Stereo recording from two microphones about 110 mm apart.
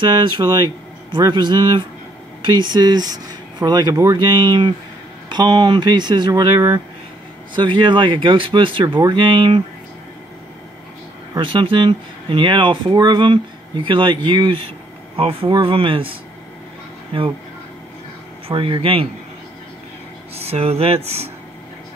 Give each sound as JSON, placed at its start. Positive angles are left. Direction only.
{"t": 0.0, "sound": "speech", "side_deg": -45}
{"t": 3.9, "sound": "speech", "side_deg": -25}
{"t": 4.2, "sound": "speech", "side_deg": -40}
{"t": 11.3, "sound": "speech", "side_deg": -45}
{"t": 15.1, "sound": "speech", "side_deg": -55}
{"t": 17.1, "sound": "speech", "side_deg": -55}
{"t": 18.5, "sound": "speech", "side_deg": -50}
{"t": 20.3, "sound": "speech", "side_deg": -65}